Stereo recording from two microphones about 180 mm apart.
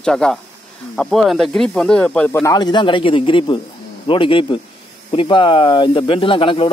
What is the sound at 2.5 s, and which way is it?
Speech, 25° left (ahead or behind).